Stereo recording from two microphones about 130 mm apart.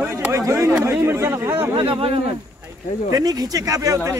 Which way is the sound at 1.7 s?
40° right (ahead or behind).